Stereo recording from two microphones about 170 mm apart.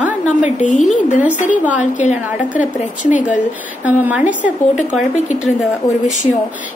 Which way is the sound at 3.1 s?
45° left (ahead or behind).